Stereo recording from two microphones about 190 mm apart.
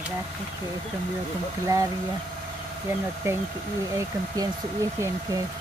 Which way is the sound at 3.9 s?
20° right (ahead or behind).